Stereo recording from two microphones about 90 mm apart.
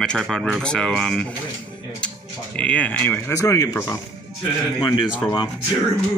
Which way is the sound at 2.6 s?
15° left (ahead or behind).